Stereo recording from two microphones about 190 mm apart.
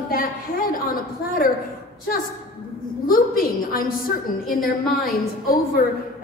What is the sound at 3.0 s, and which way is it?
Speech, 50° left (ahead or behind).